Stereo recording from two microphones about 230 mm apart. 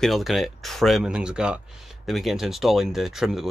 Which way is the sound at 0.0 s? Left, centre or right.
Centre.